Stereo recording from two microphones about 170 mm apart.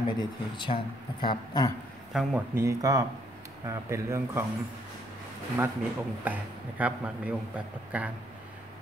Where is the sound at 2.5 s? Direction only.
20° right (ahead or behind).